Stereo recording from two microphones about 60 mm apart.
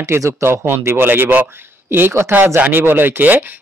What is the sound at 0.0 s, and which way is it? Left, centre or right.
Speech, right.